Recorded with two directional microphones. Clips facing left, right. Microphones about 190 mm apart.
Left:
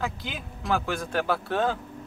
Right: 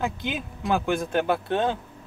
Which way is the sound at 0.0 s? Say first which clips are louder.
Right 4 dB; 20° right (ahead or behind).